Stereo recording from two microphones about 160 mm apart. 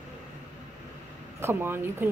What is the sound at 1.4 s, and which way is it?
Speech, 15° right (ahead or behind).